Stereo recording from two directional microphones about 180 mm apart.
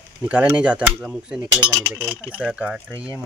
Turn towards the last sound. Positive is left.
turn(degrees=-5)  # may be behind; listen again after turning